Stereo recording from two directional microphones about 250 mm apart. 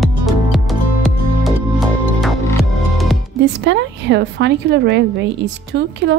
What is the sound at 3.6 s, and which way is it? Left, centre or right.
A woman's voice, right.